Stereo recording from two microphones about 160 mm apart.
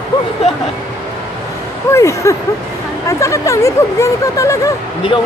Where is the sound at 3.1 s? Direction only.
20° left (ahead or behind).